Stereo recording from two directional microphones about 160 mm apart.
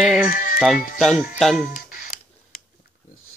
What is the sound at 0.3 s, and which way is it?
Music, 55° left (ahead or behind).